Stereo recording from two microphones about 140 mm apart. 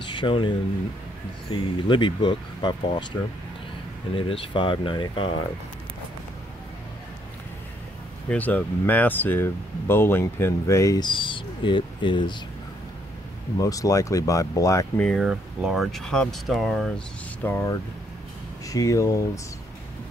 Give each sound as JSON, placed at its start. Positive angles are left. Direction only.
{"t": 0.0, "sound": "speech", "side_deg": 35}
{"t": 8.3, "sound": "speech", "side_deg": 10}
{"t": 11.1, "sound": "speech", "side_deg": 35}
{"t": 13.6, "sound": "speech", "side_deg": 25}
{"t": 15.0, "sound": "speech", "side_deg": 0}
{"t": 17.4, "sound": "speech", "side_deg": 15}